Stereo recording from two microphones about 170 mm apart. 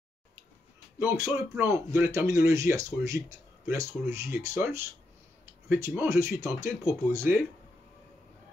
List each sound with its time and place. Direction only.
0.9 s speech: 15° right (ahead or behind)